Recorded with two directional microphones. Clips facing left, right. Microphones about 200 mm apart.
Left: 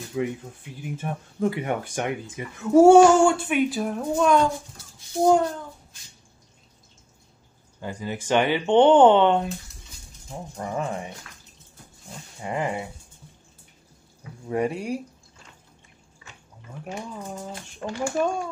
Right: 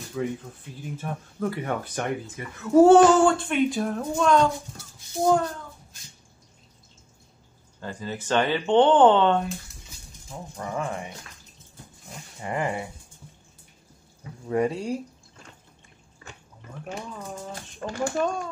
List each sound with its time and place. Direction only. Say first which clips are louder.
0.2 s speech: left 2 dB; 15° left (ahead or behind)
7.8 s speech: left 2 dB; 15° left (ahead or behind)
10.6 s speech: left 2 dB; 25° left (ahead or behind)
12.4 s speech: left 1 dB; 15° left (ahead or behind)
14.5 s speech: right 1 dB; 15° left (ahead or behind)
16.2 s a sound: right 4 dB; 45° right (ahead or behind)
17.8 s speech: left 1 dB; 10° left (ahead or behind)